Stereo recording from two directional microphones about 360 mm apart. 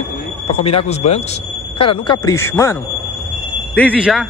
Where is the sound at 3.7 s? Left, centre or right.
Centre.